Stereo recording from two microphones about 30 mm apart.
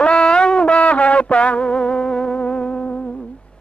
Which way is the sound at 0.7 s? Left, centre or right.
Left.